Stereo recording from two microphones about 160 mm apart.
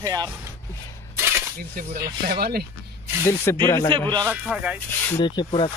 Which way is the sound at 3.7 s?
15° left (ahead or behind).